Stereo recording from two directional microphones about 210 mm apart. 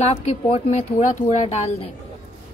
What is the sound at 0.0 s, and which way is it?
A woman's voice, 30° left (ahead or behind).